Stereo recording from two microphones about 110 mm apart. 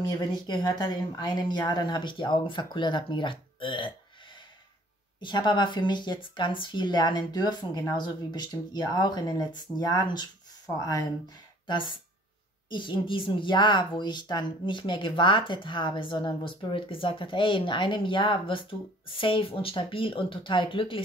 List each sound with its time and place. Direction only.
0.5 s speech: 40° left (ahead or behind)
5.2 s speech: 45° left (ahead or behind)
11.6 s speech: 45° left (ahead or behind)